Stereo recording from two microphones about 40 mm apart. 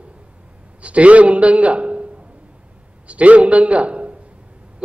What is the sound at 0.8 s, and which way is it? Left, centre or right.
A man's voice, right.